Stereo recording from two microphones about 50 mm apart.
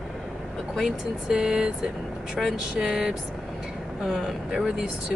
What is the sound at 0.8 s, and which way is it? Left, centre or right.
Speech, centre.